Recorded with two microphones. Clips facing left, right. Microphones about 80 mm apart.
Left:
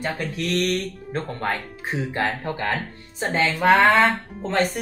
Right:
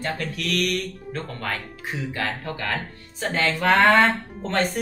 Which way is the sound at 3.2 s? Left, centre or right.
Centre.